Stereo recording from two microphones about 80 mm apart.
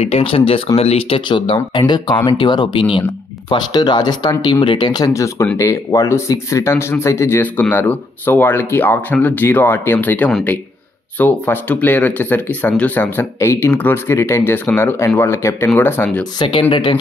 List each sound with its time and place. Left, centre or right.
0.7 s speech: left
1.3 s speech: left
3.4 s speech: left
5.0 s speech: left
7.6 s speech: left
16.3 s speech: left